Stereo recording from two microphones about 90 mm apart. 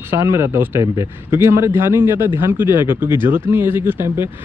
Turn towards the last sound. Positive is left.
turn(degrees=-25)  # may be behind; listen again after turning